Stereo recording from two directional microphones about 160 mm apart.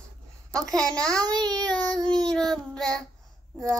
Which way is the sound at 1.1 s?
25° right (ahead or behind).